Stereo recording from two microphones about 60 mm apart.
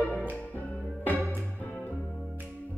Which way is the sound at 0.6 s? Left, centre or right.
Left.